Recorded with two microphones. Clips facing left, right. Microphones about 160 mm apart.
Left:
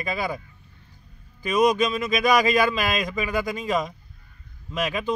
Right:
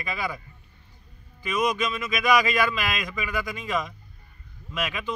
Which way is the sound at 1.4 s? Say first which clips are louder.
Left 6 dB; 35° left (ahead or behind).